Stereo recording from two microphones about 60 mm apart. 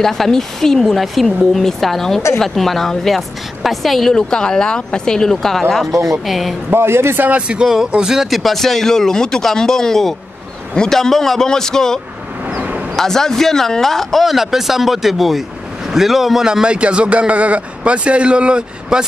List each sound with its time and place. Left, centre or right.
0.0 s a woman's voice: centre
5.9 s speech: right
6.2 s speech: centre
6.7 s a man's voice: right
7.2 s speech: right
7.6 s a man's voice: centre
8.3 s a woman's voice: centre
12.5 s a sound: centre
12.9 s a man's voice: centre